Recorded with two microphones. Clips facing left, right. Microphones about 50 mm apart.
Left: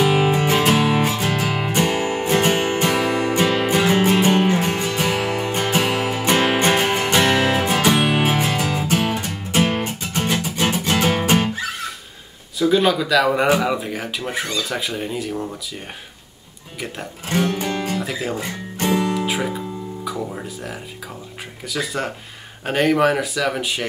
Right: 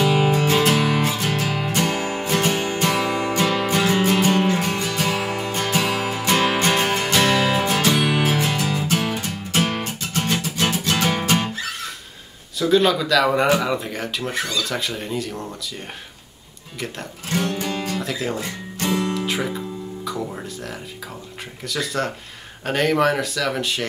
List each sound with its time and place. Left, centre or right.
0.0 s music: left
12.5 s speech: centre
17.3 s music: left
17.9 s speech: centre
18.4 s guitar: left
19.1 s music: centre
20.1 s speech: centre